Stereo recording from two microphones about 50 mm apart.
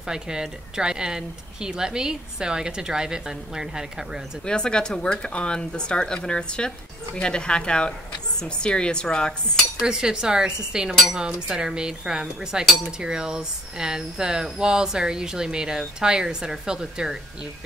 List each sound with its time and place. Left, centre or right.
0.0 s speech: centre
4.5 s speech: centre
9.8 s speech: centre